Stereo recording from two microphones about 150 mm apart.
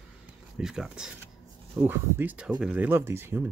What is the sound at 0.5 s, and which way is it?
Speech, 5° right (ahead or behind).